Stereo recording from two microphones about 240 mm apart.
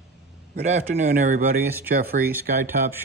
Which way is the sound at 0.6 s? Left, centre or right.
Right.